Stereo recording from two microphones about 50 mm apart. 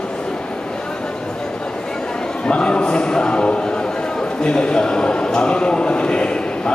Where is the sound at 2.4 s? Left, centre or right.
Left.